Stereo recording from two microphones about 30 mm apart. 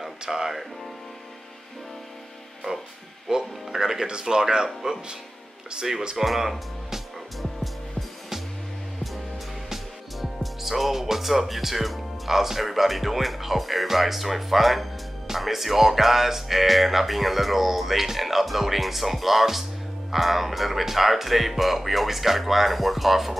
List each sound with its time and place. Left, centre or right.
0.3 s speech: centre
3.3 s speech: right
6.2 s speech: centre
10.4 s speech: centre